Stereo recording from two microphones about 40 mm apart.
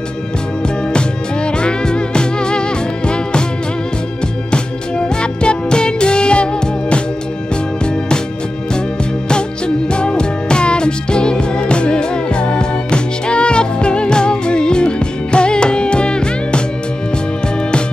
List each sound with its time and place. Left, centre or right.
0.9 s music: left
4.5 s music: left
9.8 s music: left